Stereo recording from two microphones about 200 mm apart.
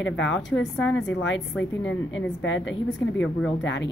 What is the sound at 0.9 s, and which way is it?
A woman's voice, 70° left (ahead or behind).